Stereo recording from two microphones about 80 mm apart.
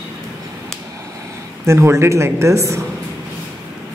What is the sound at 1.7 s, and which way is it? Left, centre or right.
Speech, right.